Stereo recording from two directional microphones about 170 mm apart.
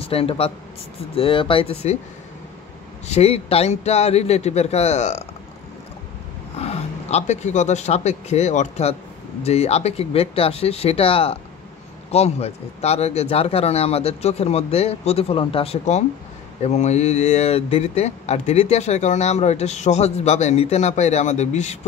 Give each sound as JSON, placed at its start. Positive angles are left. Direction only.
{"t": 0.0, "sound": "a man's voice", "side_deg": 35}
{"t": 3.1, "sound": "speech", "side_deg": 35}
{"t": 6.6, "sound": "speech", "side_deg": 40}